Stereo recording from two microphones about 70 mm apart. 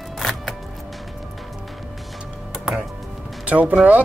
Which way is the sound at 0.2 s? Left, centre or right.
Centre.